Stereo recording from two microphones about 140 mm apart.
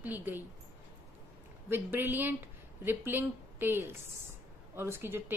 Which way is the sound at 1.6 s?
15° right (ahead or behind).